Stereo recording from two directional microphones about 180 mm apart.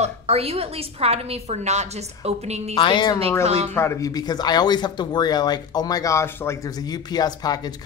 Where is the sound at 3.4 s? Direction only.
35° right (ahead or behind).